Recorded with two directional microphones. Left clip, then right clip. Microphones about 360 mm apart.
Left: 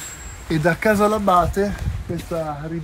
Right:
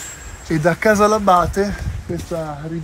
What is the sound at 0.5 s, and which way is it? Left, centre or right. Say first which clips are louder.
Speech: right 3 dB; centre.